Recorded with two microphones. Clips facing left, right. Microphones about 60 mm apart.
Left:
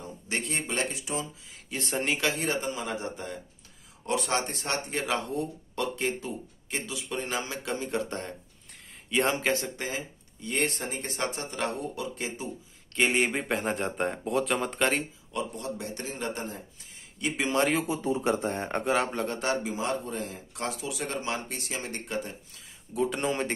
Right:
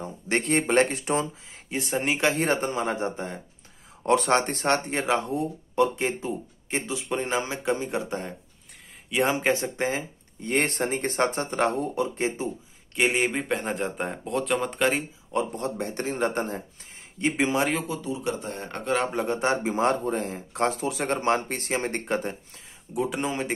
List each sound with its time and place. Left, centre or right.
0.0 s a sound: right
0.6 s speech: right
1.8 s speech: centre
2.3 s speech: right
4.0 s speech: right
5.0 s speech: right; by 9.4 s centre
9.4 s speech: right
12.9 s speech: centre
15.3 s speech: right
17.2 s speech: right
18.0 s speech: left
19.1 s speech: centre
19.7 s speech: right
22.9 s speech: centre